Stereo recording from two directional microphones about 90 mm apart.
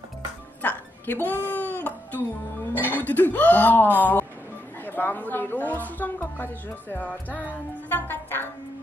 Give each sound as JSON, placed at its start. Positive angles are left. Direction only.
{"t": 0.6, "sound": "music", "side_deg": 20}
{"t": 2.7, "sound": "a woman's voice", "side_deg": 20}